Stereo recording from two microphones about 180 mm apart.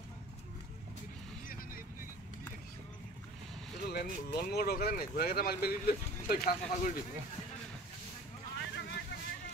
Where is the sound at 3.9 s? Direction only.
60° left (ahead or behind).